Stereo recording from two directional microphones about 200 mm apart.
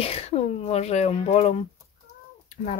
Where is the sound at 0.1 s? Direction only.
30° left (ahead or behind).